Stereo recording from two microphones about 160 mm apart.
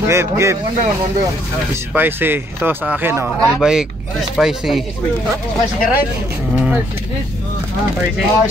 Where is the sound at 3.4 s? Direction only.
Centre (ahead or behind).